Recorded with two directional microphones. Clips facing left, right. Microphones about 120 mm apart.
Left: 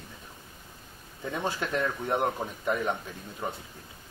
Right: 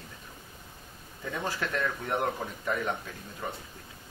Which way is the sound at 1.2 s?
20° left (ahead or behind).